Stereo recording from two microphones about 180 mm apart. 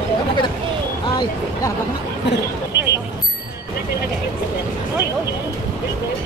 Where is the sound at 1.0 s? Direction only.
20° left (ahead or behind).